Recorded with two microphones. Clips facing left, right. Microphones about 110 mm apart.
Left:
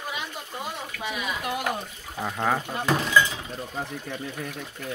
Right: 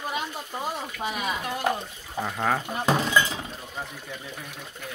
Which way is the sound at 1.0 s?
45° right (ahead or behind).